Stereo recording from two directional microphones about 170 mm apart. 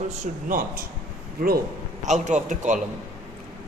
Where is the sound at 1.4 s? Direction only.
60° right (ahead or behind).